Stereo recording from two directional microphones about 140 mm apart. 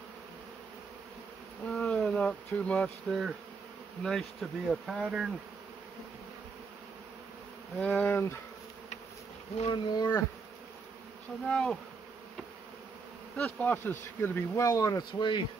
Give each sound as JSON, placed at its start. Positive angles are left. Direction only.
{"t": 1.7, "sound": "insect", "side_deg": 5}
{"t": 3.1, "sound": "speech", "side_deg": 0}
{"t": 7.8, "sound": "speech", "side_deg": 10}
{"t": 9.7, "sound": "speech", "side_deg": 30}
{"t": 11.4, "sound": "speech", "side_deg": 5}
{"t": 13.4, "sound": "speech", "side_deg": 10}
{"t": 14.7, "sound": "speech", "side_deg": 25}